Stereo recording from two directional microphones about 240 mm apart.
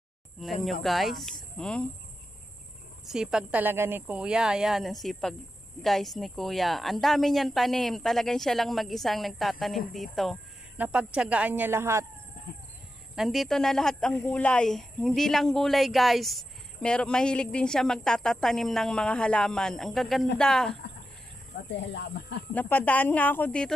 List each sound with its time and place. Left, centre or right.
0.4 s speech: centre
3.1 s speech: centre
13.1 s speech: centre
21.6 s speech: left
22.5 s speech: centre